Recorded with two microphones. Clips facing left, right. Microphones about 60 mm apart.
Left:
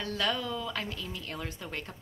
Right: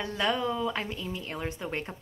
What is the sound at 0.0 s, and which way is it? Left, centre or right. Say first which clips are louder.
A woman's voice: right 3 dB; right.